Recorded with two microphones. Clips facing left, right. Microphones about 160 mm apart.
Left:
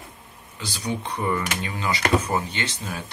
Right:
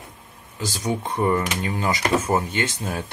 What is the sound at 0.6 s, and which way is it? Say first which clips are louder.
A man's voice: right 3 dB; 45° right (ahead or behind).